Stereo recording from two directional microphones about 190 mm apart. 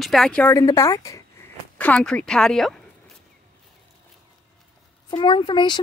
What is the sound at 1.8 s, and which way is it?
Speech, 5° left (ahead or behind).